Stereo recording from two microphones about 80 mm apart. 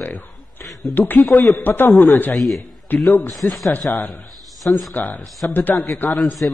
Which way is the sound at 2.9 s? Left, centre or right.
Left.